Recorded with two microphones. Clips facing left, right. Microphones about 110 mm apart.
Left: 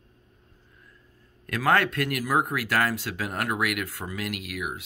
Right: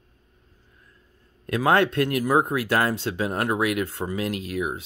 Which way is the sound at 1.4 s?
25° right (ahead or behind).